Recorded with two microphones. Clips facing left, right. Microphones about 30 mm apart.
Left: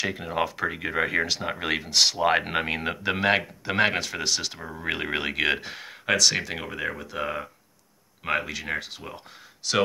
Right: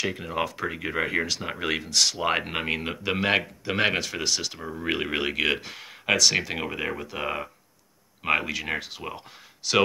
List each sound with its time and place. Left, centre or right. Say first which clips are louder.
0.0 s speech: left 1 dB; centre
1.9 s speech: left 3 dB; left
2.2 s speech: left 3 dB; centre
6.6 s speech: right 1 dB; centre